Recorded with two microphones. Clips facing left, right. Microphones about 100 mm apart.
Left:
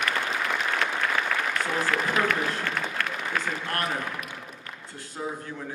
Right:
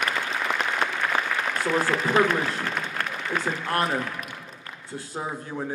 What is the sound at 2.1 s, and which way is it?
A man's voice, 25° right (ahead or behind).